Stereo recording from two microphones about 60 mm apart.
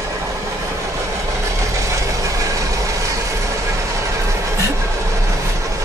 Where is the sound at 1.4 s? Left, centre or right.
Right.